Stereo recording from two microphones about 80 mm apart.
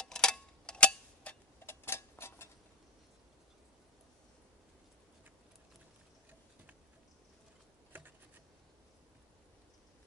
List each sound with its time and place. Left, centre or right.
0.0 s tick-tock: centre
1.7 s tick-tock: left